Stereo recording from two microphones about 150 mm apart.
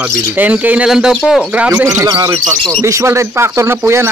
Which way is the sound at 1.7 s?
20° right (ahead or behind).